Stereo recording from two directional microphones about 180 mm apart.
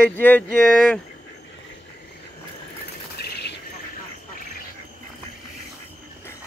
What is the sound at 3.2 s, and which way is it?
Bird, 70° left (ahead or behind).